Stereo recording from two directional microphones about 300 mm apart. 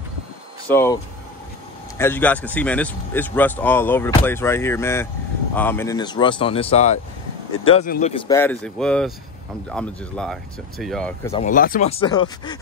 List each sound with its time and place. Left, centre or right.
0.7 s a man's voice: centre
2.0 s a man's voice: centre; by 8.2 s left
8.3 s speech: centre
11.3 s speech: left
12.0 s a man's voice: centre